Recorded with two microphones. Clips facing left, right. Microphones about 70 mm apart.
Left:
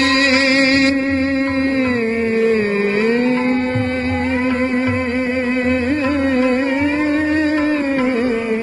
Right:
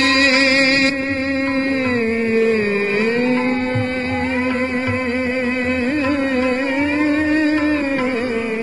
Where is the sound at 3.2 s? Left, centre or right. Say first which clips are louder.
Left 1 dB; centre.